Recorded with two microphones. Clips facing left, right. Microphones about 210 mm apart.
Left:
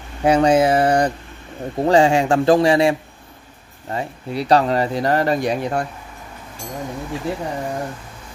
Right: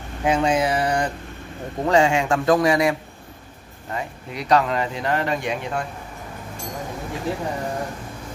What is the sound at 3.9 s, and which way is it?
Speech, 35° left (ahead or behind).